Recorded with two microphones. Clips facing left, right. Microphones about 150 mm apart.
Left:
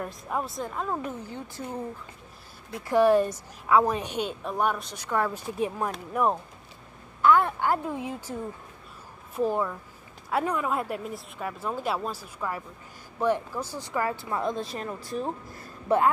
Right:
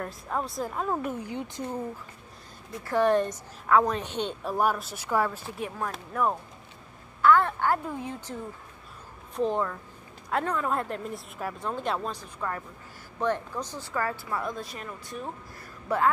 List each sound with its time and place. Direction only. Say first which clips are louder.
0.0 s speech: left 1 dB; 5° left (ahead or behind); by 1.8 s 15° right (ahead or behind)
2.8 s a woman's voice: left 3 dB; 10° left (ahead or behind)
4.4 s speech: right 3 dB; 5° right (ahead or behind)
5.3 s speech: left 6 dB; 20° left (ahead or behind)
7.2 s a sound: even; 15° left (ahead or behind)
7.9 s a woman's voice: left 2 dB; 5° left (ahead or behind); by 16.1 s 25° left (ahead or behind)